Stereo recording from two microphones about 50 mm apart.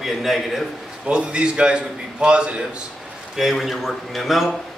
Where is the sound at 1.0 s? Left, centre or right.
Right.